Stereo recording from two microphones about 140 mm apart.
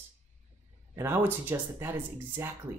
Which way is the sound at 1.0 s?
15° right (ahead or behind).